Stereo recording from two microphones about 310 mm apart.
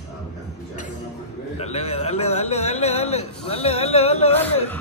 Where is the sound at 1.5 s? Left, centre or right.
Left.